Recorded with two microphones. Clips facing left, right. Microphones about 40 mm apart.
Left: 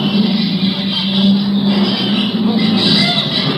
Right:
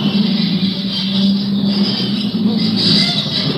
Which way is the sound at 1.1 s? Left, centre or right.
Left.